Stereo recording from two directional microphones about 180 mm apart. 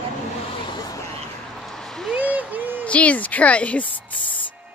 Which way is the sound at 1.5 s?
Centre (ahead or behind).